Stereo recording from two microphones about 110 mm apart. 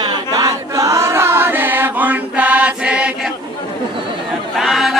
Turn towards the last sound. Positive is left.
turn(degrees=0)  # may be behind; listen again after turning